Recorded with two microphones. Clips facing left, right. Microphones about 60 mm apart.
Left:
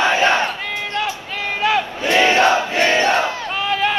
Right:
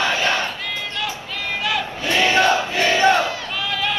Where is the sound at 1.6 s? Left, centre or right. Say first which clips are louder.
Left 6 dB; left.